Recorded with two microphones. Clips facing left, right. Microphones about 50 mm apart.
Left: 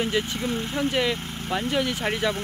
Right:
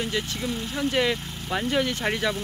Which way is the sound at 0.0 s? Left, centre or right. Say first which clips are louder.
Left 3 dB; left.